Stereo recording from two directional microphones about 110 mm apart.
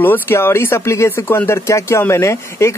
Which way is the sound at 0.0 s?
20° left (ahead or behind).